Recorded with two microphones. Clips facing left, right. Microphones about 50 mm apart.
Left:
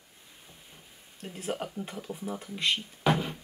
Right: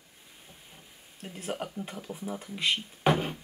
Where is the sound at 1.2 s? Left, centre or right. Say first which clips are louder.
Left 1 dB; centre.